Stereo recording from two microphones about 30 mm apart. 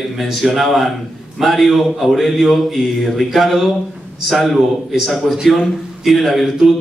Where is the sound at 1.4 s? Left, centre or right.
Centre.